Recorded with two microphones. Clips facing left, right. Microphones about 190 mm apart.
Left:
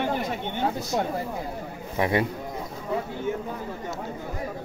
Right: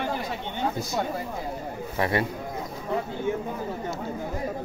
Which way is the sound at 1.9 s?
15° left (ahead or behind).